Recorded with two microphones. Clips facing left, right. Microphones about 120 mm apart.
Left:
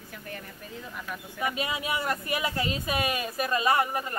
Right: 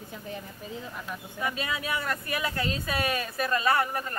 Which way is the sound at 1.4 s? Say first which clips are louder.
Left 1 dB; 15° left (ahead or behind).